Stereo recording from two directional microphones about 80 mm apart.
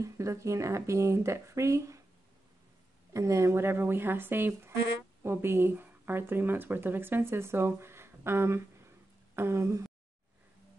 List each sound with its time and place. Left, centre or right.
0.0 s speech: right
3.1 s a woman's voice: right